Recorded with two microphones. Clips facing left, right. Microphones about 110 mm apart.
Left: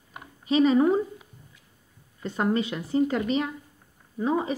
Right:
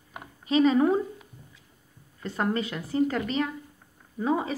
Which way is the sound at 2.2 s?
25° left (ahead or behind).